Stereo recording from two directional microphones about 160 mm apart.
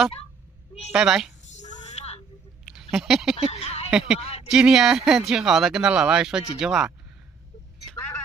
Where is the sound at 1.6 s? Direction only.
45° left (ahead or behind).